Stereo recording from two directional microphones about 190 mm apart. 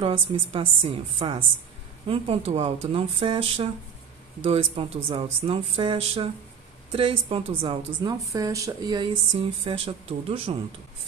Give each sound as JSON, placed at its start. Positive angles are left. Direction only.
{"t": 0.0, "sound": "a woman's voice", "side_deg": -30}